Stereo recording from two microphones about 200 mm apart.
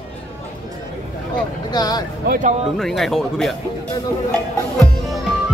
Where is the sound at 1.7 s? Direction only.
20° left (ahead or behind).